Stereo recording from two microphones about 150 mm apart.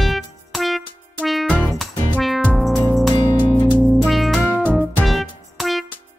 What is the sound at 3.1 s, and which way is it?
Music, 25° left (ahead or behind).